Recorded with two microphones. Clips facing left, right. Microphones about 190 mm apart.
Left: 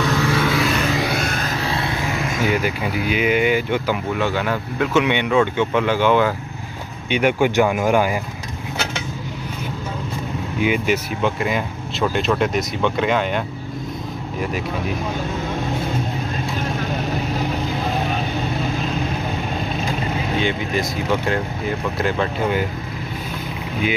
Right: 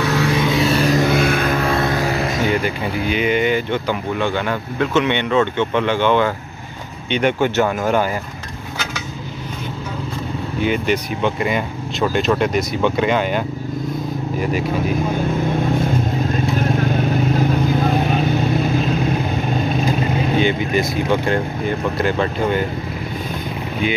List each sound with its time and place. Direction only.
0.0 s vehicle: 10° right (ahead or behind); by 2.3 s 35° right (ahead or behind)
2.4 s speech: 5° left (ahead or behind)
10.6 s speech: 5° left (ahead or behind)
20.3 s speech: centre (ahead or behind)